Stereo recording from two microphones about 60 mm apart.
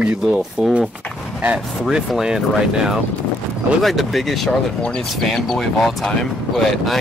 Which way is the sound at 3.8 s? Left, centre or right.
Centre.